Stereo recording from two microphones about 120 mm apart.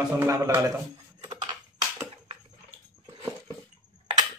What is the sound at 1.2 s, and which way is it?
Typing, 35° right (ahead or behind).